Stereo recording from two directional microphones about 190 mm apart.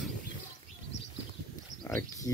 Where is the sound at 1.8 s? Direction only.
15° left (ahead or behind).